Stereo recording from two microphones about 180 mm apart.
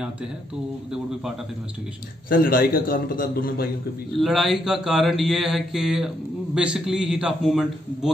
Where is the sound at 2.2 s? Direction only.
50° left (ahead or behind).